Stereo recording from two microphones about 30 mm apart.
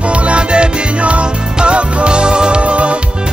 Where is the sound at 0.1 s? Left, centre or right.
Right.